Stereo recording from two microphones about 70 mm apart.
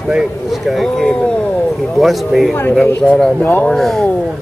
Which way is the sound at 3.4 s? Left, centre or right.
Left.